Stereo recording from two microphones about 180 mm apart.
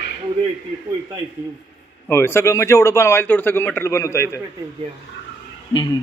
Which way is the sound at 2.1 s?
15° left (ahead or behind).